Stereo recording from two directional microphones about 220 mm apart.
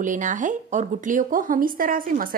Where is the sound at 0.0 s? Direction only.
35° right (ahead or behind).